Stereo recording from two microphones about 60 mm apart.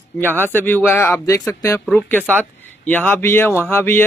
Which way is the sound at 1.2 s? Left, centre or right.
Left.